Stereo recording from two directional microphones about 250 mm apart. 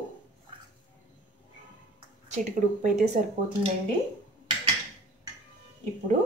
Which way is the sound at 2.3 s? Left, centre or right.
Right.